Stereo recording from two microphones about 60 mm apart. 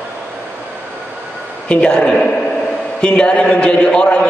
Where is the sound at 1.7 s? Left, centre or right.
Centre.